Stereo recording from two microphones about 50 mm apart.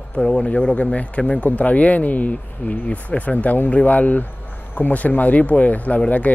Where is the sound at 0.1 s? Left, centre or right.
Centre.